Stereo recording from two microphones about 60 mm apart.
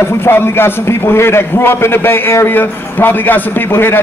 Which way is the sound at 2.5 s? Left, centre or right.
Left.